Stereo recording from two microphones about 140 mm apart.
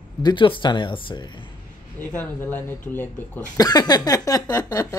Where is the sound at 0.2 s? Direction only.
35° left (ahead or behind).